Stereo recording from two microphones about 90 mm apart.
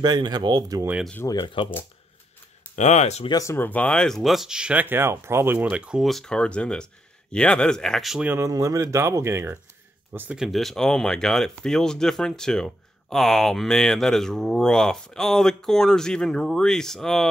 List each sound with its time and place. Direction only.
0.0 s speech: 55° right (ahead or behind)
1.2 s speech: 50° left (ahead or behind)
2.6 s a sound: 20° left (ahead or behind)
3.4 s speech: 20° left (ahead or behind)
4.2 s speech: centre (ahead or behind)
4.8 s speech: 25° right (ahead or behind)
6.0 s speech: 5° left (ahead or behind)
8.4 s speech: 35° right (ahead or behind)
10.3 s speech: centre (ahead or behind)